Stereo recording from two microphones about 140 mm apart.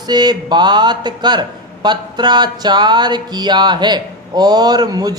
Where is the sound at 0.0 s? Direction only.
30° right (ahead or behind).